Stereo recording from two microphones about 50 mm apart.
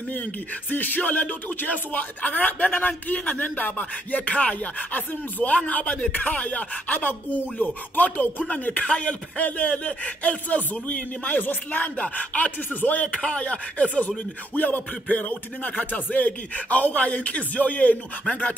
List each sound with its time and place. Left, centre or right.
0.7 s a man's voice: left